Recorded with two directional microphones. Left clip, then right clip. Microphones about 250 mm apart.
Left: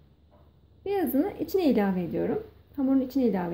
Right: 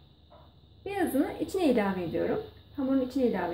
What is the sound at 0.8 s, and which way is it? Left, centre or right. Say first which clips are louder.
Speech: left 2 dB; left.